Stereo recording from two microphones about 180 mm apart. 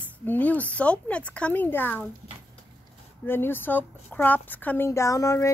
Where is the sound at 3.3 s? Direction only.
10° left (ahead or behind).